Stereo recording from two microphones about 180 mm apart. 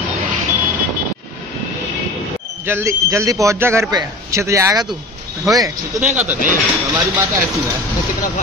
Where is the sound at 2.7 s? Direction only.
15° right (ahead or behind).